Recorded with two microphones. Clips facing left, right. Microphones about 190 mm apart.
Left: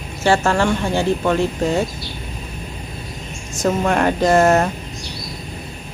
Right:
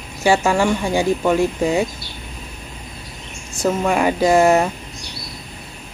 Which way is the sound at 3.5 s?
5° right (ahead or behind).